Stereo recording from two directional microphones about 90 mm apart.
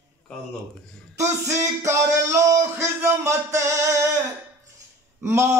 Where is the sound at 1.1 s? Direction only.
35° right (ahead or behind).